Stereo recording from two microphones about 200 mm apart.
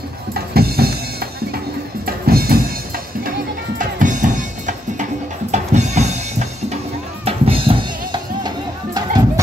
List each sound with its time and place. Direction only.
0.3 s music: 50° right (ahead or behind); by 9.2 s 20° right (ahead or behind)